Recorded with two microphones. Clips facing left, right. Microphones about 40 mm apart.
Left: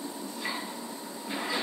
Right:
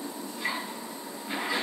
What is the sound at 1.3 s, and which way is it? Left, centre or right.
Train, centre.